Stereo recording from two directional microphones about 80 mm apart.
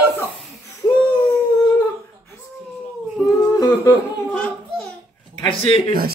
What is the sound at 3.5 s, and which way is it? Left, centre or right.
Humming, left.